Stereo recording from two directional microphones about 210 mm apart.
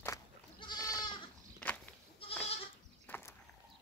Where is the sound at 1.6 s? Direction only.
5° left (ahead or behind).